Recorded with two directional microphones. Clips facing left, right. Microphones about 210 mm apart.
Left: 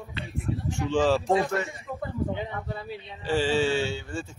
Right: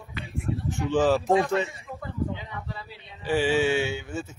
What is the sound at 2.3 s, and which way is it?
Speech, 55° left (ahead or behind).